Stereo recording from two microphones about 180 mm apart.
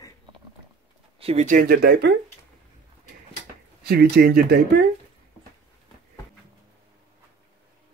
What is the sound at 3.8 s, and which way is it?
Speech, 60° right (ahead or behind).